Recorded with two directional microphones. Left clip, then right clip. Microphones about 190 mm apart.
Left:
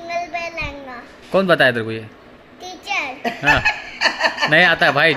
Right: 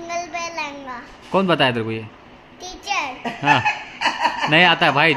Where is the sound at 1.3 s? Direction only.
10° right (ahead or behind).